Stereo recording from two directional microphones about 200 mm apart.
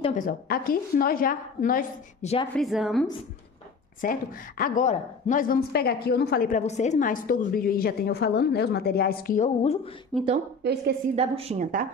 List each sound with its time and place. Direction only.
0.1 s a woman's voice: 45° left (ahead or behind)
2.5 s a woman's voice: centre (ahead or behind)
4.0 s a woman's voice: 45° left (ahead or behind)
10.1 s a woman's voice: 5° left (ahead or behind)
10.6 s a woman's voice: 55° right (ahead or behind)
11.1 s a woman's voice: 30° right (ahead or behind)